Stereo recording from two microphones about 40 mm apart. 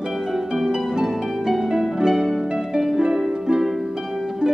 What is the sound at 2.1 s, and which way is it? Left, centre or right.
Harp, centre.